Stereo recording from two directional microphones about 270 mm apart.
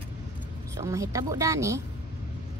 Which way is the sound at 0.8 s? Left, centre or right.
Centre.